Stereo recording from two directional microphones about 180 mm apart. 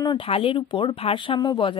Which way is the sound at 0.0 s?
30° left (ahead or behind).